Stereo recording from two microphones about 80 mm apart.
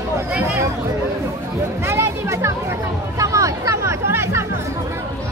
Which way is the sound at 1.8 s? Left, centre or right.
Right.